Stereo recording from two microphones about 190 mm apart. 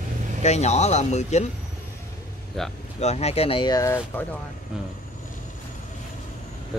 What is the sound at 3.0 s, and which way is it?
Speech, 35° left (ahead or behind).